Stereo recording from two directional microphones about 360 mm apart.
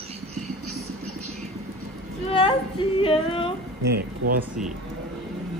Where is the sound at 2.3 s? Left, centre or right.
Centre.